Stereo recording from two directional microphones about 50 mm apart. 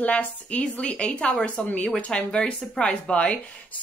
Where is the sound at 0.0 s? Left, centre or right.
Left.